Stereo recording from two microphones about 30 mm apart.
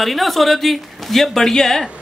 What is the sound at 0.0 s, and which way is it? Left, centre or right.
A man's voice, centre.